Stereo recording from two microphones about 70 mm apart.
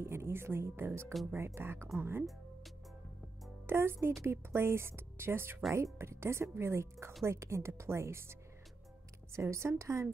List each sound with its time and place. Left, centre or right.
0.0 s speech: right
3.6 s a woman's voice: right